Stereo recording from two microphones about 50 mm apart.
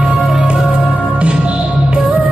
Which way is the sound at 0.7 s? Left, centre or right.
Right.